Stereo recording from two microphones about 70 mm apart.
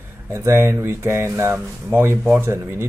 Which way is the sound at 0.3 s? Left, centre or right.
Right.